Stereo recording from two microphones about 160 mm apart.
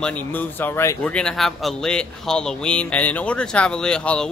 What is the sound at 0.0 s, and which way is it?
A man's voice, 10° left (ahead or behind).